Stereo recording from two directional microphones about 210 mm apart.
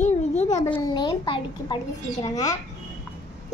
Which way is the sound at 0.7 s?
20° left (ahead or behind).